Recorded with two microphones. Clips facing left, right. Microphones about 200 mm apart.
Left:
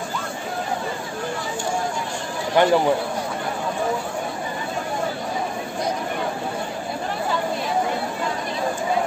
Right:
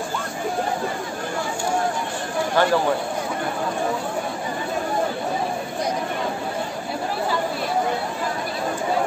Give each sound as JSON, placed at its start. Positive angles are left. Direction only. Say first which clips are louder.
{"t": 2.5, "sound": "speech", "louder": "left 3 dB", "side_deg": 20}